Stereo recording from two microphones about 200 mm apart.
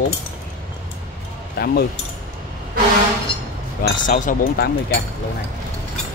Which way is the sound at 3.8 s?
40° left (ahead or behind).